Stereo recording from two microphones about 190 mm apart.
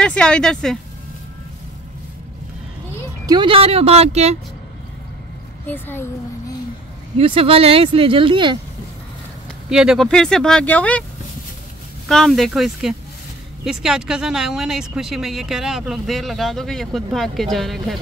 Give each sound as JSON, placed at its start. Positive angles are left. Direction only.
{"t": 0.0, "sound": "speech", "side_deg": 5}
{"t": 3.3, "sound": "speech", "side_deg": -25}
{"t": 5.7, "sound": "a woman's voice", "side_deg": 10}
{"t": 7.2, "sound": "speech", "side_deg": -30}
{"t": 9.7, "sound": "speech", "side_deg": -5}
{"t": 12.1, "sound": "speech", "side_deg": 0}